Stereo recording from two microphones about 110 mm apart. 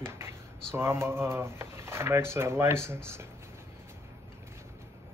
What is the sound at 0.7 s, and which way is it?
Speech, 25° right (ahead or behind).